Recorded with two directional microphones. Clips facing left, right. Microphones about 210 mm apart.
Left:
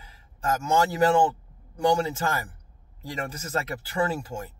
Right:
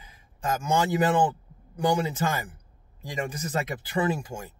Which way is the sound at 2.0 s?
20° right (ahead or behind).